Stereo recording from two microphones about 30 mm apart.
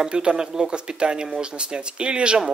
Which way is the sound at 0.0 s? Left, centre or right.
Right.